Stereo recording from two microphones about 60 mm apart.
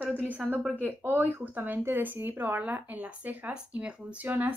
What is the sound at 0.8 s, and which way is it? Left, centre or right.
Speech, right.